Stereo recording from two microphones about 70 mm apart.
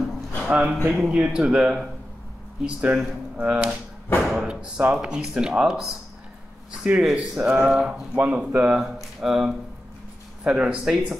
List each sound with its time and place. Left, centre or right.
0.5 s speech: centre
9.2 s speech: centre